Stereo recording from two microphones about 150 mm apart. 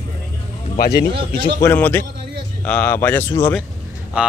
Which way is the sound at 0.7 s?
90° left.